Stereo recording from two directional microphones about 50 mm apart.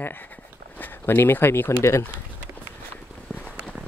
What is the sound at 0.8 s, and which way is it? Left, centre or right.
Speech, left.